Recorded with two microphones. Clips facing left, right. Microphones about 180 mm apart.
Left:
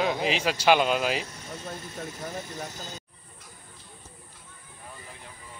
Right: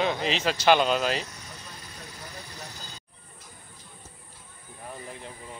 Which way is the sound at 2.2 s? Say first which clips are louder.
Left 6 dB; 45° left (ahead or behind).